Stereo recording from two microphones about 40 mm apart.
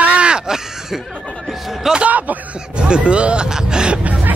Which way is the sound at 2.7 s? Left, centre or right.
Right.